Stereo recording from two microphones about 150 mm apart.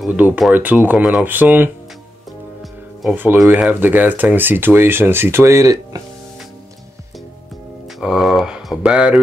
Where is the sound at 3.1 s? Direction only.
10° right (ahead or behind).